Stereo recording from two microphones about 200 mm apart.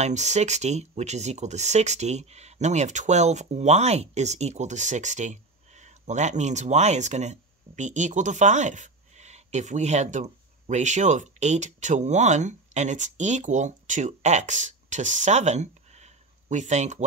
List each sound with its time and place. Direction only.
0.0 s speech: 35° right (ahead or behind)